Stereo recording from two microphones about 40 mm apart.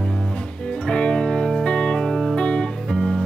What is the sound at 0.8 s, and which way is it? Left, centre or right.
Music, left.